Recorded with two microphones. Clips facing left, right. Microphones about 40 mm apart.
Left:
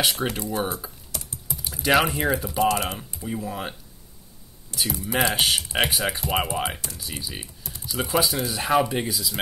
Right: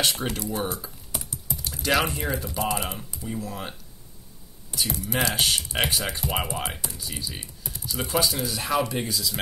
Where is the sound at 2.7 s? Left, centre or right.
Centre.